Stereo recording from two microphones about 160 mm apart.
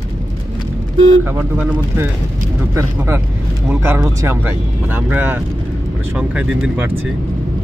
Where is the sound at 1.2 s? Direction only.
10° right (ahead or behind).